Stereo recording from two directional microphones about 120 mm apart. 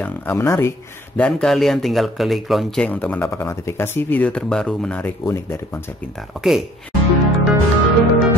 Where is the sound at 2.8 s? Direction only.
15° left (ahead or behind).